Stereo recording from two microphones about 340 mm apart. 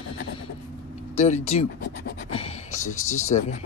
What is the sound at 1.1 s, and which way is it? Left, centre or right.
Speech, centre.